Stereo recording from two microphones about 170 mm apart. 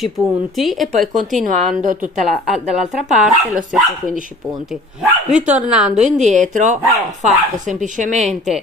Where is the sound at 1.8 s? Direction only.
45° right (ahead or behind).